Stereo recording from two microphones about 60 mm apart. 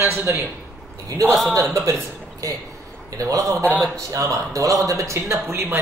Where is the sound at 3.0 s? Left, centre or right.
Right.